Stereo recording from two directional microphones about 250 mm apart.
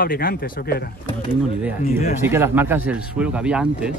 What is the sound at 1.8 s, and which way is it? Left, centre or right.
Speech, left.